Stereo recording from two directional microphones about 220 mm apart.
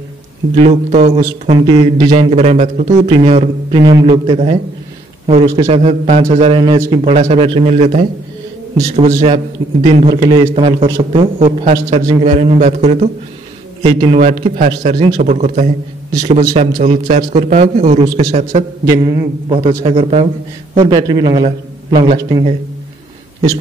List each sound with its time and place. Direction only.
0.6 s a man's voice: 30° right (ahead or behind)